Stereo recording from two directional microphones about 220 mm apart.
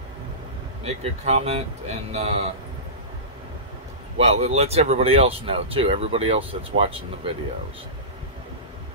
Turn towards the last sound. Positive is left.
turn(degrees=-25)  # may be behind; listen again after turning